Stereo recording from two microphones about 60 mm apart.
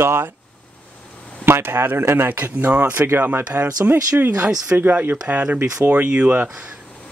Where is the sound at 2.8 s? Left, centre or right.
Right.